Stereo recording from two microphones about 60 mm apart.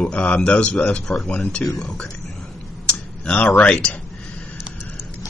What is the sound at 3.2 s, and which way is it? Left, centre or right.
Speech, centre.